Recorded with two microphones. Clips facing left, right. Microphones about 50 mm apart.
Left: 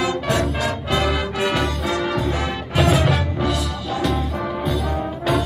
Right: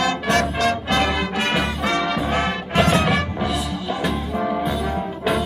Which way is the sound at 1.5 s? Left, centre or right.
Centre.